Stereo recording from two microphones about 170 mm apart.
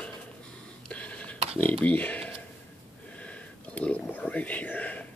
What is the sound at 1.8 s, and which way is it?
Speech, 10° left (ahead or behind).